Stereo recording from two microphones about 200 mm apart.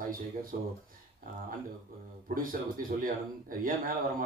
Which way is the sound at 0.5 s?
45° right (ahead or behind).